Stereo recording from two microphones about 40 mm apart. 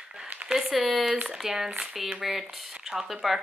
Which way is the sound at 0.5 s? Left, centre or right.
Centre.